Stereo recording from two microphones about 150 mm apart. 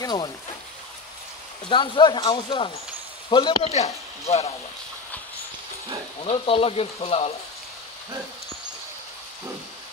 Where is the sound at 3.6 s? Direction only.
45° left (ahead or behind).